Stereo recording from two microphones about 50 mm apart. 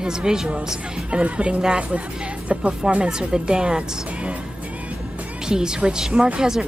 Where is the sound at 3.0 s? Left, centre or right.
Centre.